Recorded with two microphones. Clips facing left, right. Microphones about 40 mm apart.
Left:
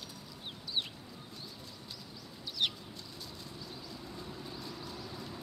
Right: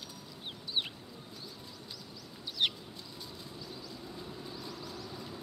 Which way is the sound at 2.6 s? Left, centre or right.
Centre.